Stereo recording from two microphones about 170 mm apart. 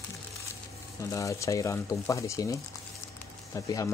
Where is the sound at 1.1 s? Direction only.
20° left (ahead or behind).